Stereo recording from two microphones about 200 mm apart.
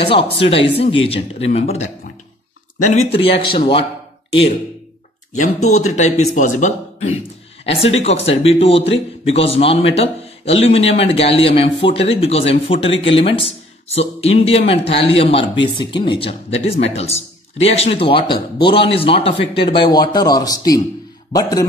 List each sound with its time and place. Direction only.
0.4 s speech: 30° left (ahead or behind)
5.3 s a man's voice: 35° left (ahead or behind); by 21.6 s 20° left (ahead or behind)